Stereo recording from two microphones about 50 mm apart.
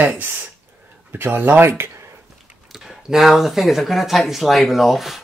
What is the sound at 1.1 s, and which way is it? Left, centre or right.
Speech, right.